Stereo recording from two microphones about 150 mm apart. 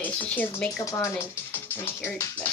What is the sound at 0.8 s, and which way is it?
Speech, 20° left (ahead or behind).